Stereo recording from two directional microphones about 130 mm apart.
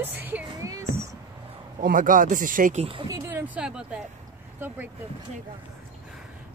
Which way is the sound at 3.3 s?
15° right (ahead or behind).